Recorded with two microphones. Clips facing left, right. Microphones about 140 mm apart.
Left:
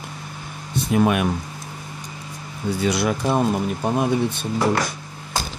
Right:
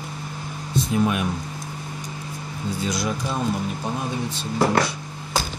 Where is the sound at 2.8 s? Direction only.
65° left (ahead or behind).